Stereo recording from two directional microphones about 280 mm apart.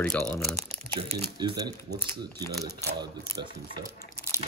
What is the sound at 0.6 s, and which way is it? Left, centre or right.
Speech, right.